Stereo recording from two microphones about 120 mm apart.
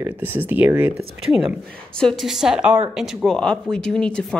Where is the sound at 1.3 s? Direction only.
Centre (ahead or behind).